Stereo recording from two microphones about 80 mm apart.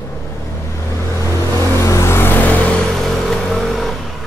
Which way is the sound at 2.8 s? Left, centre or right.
Centre.